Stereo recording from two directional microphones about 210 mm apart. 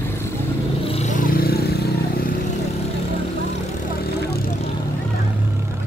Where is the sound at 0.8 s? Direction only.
30° left (ahead or behind); by 1.8 s 50° left (ahead or behind).